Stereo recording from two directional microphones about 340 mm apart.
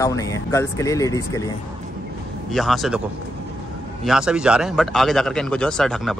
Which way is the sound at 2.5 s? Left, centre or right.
Centre.